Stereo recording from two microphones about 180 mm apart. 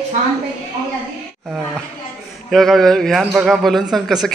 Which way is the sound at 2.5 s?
Centre (ahead or behind).